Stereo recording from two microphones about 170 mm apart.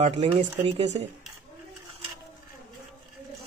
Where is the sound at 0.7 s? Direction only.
35° right (ahead or behind).